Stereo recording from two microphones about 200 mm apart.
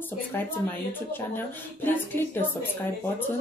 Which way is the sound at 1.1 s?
10° left (ahead or behind).